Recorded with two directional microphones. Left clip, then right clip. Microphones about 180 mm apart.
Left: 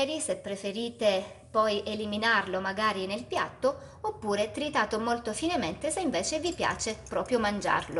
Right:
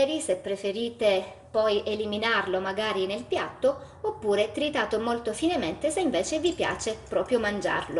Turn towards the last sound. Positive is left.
turn(degrees=20)  # may be behind; listen again after turning